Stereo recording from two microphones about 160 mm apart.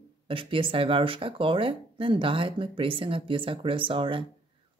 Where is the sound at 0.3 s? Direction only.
35° right (ahead or behind).